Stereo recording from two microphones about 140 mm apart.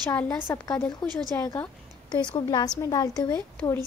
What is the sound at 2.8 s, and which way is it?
Speech, 25° left (ahead or behind).